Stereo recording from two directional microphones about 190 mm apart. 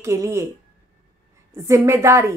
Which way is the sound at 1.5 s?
15° right (ahead or behind).